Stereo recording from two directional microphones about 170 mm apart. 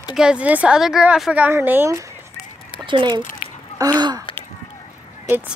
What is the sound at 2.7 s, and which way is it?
A woman's voice, 30° right (ahead or behind).